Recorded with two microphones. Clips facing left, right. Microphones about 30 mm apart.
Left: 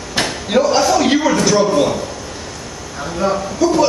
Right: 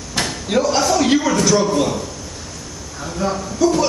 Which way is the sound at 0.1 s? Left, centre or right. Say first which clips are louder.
Left 3 dB; centre.